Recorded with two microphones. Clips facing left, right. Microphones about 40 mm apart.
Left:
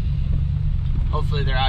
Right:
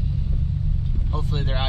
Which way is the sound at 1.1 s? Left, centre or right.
Left.